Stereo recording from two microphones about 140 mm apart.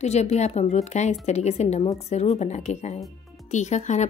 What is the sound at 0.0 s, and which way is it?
A woman's voice, 50° left (ahead or behind).